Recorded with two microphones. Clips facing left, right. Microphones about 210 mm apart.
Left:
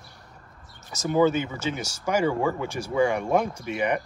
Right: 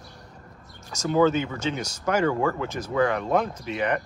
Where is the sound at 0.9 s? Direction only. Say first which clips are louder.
Even; 10° left (ahead or behind).